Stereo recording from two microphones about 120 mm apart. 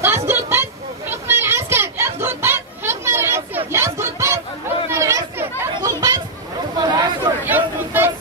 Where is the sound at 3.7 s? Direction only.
20° right (ahead or behind).